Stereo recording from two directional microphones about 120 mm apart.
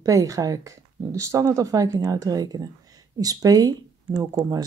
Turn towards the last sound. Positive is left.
turn(degrees=-30)  # may be behind; listen again after turning